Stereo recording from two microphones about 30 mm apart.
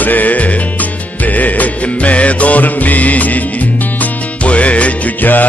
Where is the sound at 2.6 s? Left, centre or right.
Left.